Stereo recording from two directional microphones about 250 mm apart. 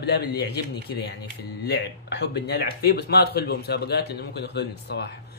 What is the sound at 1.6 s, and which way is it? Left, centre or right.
Speech, left.